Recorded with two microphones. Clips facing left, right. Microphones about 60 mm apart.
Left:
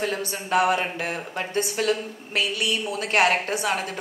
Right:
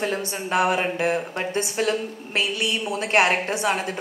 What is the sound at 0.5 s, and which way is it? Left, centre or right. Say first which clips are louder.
A woman's voice: even; right.